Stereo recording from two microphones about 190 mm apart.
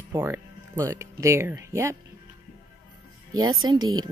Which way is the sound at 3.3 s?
20° right (ahead or behind).